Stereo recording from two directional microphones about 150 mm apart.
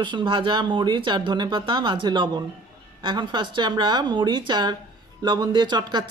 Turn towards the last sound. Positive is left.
turn(degrees=-30)  # may be behind; listen again after turning